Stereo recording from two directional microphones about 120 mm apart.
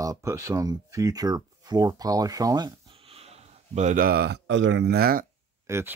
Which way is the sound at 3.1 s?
60° right (ahead or behind).